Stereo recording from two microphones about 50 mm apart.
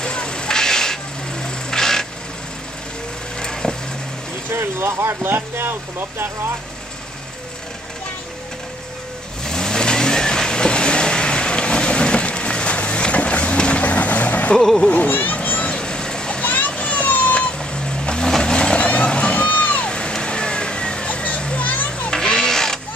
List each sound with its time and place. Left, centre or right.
0.0 s a sound: centre
3.3 s vehicle: centre
4.5 s speech: right
9.4 s vehicle: centre; by 14.5 s left
14.9 s speech: left
15.3 s children playing: left
15.7 s splash: centre
16.5 s vehicle: left
21.4 s children playing: left
21.6 s children playing: left
22.1 s music: centre